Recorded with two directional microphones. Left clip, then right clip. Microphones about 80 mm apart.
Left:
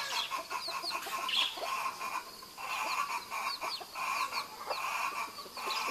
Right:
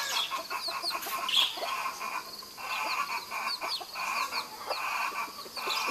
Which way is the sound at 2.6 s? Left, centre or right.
Left.